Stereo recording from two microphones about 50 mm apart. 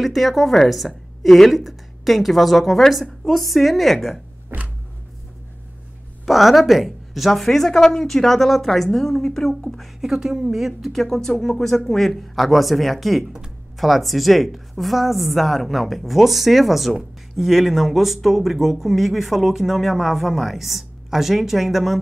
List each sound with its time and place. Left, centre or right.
0.0 s a woman's voice: centre
4.5 s a sound: right
6.2 s a woman's voice: centre
9.9 s a woman's voice: centre